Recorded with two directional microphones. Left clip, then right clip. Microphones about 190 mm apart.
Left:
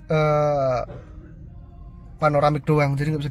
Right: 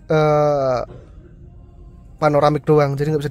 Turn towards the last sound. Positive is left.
turn(degrees=-30)  # may be behind; listen again after turning